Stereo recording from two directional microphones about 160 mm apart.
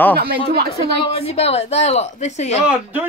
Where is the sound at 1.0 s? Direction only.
40° left (ahead or behind).